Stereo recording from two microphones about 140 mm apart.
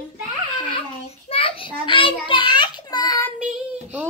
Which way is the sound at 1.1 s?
45° left (ahead or behind).